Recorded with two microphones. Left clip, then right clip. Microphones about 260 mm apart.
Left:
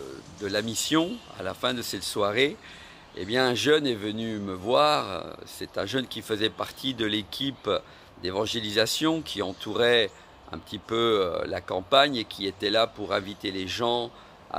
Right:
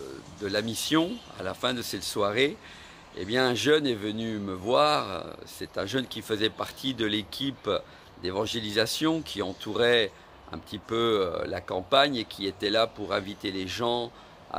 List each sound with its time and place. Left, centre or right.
0.4 s speech: centre